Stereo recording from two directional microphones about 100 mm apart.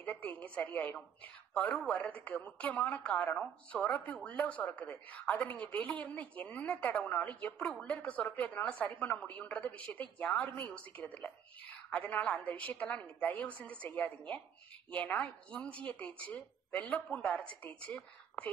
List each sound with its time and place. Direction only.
0.0 s a woman's voice: 15° left (ahead or behind)